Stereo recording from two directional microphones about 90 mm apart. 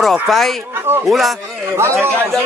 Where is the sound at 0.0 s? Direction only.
Centre (ahead or behind).